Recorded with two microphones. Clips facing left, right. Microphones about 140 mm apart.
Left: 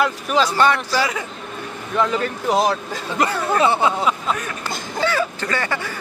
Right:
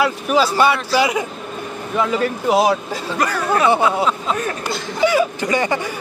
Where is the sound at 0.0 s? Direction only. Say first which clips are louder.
Right 2 dB; 10° right (ahead or behind).